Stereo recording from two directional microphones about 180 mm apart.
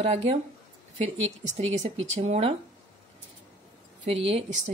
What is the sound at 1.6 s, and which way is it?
Speech, 35° right (ahead or behind).